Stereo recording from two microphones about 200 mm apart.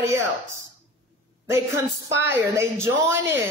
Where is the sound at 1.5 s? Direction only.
15° right (ahead or behind).